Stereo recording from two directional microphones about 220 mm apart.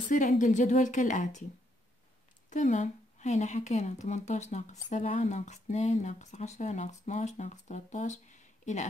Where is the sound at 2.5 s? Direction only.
35° left (ahead or behind).